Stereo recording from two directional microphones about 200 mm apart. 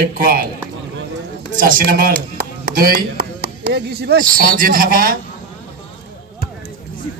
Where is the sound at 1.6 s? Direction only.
45° right (ahead or behind).